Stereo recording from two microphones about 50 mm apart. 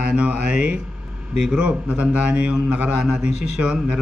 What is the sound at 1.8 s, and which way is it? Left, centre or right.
A man's voice, right.